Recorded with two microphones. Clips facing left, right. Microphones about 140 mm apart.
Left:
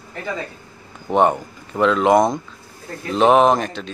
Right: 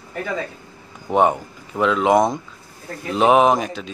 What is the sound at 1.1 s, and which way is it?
Speech, 5° right (ahead or behind).